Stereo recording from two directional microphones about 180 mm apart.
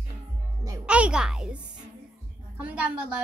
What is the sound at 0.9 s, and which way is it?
A child's voice, 5° right (ahead or behind).